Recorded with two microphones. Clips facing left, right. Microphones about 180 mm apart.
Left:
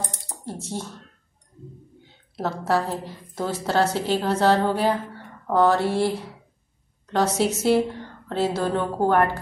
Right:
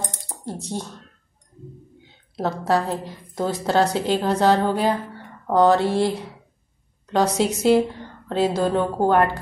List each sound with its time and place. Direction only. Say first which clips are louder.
0.6 s speech: right 2 dB; 15° right (ahead or behind)
2.3 s a woman's voice: right 2 dB; 15° right (ahead or behind)